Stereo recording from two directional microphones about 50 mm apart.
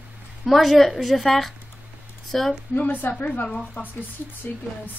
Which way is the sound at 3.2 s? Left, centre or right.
Left.